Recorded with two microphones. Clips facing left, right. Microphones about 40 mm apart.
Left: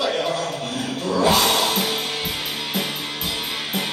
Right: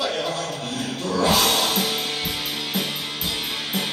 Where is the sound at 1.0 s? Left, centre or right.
Centre.